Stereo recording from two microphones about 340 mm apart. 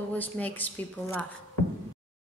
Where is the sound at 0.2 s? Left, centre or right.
Centre.